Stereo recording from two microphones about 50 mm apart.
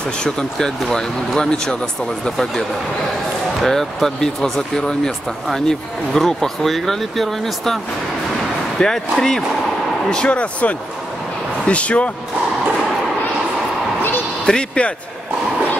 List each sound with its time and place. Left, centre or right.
0.2 s speech: centre
3.6 s speech: centre
10.0 s speech: left
14.4 s speech: centre